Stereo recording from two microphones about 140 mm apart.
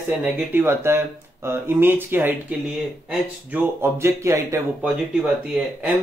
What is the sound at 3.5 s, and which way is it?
Speech, 15° right (ahead or behind).